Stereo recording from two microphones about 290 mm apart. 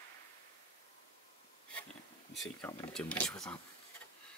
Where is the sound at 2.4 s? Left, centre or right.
Centre.